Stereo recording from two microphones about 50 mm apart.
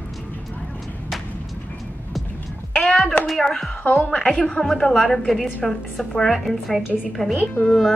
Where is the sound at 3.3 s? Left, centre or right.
Centre.